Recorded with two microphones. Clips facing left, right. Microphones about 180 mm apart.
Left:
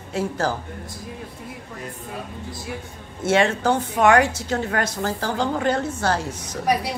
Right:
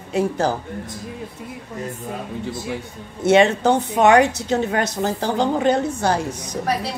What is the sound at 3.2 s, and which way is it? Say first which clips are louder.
A woman's voice: right 5 dB; 20° right (ahead or behind).